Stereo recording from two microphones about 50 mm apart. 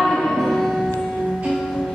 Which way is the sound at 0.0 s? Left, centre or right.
Centre.